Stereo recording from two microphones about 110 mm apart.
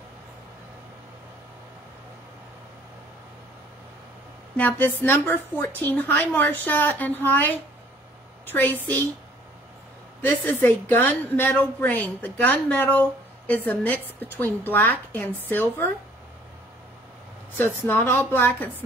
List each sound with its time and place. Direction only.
4.6 s a woman's voice: 15° left (ahead or behind)
10.4 s a woman's voice: 15° left (ahead or behind)
17.6 s a woman's voice: 20° left (ahead or behind)